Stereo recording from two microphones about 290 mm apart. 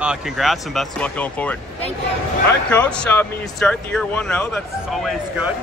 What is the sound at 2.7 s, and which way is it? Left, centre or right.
Speech, centre.